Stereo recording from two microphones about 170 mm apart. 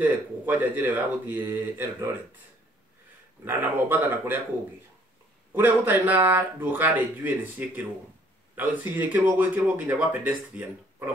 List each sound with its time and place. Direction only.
0.0 s speech: 10° right (ahead or behind)
3.4 s speech: 10° right (ahead or behind)
5.5 s speech: 10° right (ahead or behind)